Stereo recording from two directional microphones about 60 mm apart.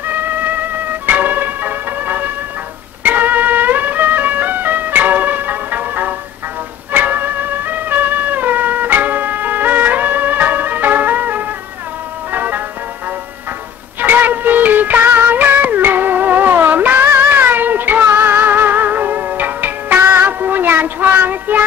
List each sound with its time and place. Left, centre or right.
0.1 s music: right
14.0 s music: right